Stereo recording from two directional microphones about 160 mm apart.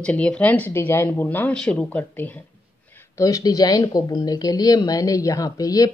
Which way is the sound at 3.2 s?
20° left (ahead or behind).